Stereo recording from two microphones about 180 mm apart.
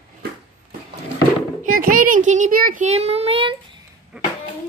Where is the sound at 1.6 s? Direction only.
50° right (ahead or behind); by 3.5 s 30° right (ahead or behind).